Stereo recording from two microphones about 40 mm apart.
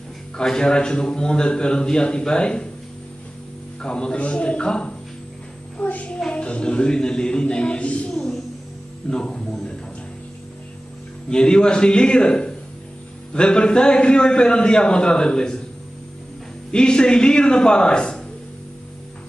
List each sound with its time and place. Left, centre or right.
0.4 s a man's voice: centre
3.8 s a man's voice: left
5.8 s child singing: left
6.3 s a man's voice: left
9.1 s a man's voice: centre
11.2 s a man's voice: left
16.7 s a man's voice: left